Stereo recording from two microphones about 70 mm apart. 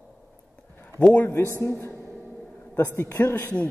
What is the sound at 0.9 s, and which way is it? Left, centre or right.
Speech, centre.